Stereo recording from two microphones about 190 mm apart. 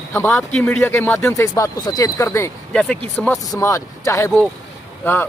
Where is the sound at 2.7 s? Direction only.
5° left (ahead or behind).